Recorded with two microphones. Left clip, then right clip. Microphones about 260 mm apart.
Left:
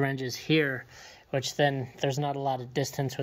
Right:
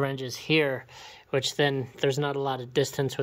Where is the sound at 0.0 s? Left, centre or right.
Centre.